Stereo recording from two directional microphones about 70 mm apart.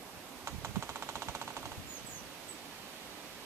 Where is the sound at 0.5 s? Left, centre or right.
Right.